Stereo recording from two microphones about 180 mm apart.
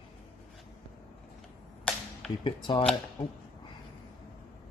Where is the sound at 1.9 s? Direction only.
5° left (ahead or behind).